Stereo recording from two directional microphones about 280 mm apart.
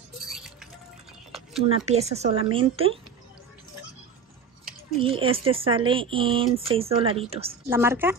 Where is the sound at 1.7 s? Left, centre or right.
Right.